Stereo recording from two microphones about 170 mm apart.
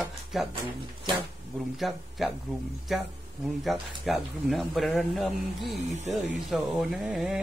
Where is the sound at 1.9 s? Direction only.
Centre (ahead or behind).